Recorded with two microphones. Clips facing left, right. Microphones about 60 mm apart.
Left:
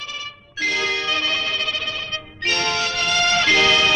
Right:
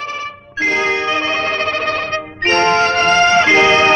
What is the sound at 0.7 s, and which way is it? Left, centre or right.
Music, right.